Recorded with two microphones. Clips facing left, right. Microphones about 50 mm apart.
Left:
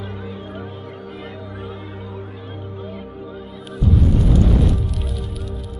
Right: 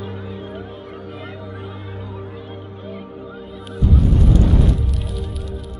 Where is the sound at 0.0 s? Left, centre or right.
Centre.